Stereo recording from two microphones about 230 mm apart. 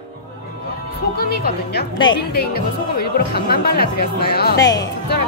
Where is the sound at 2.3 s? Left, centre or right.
Left.